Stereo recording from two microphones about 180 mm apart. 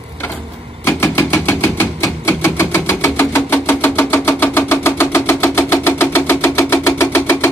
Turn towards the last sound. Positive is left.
turn(degrees=15)  # may be behind; listen again after turning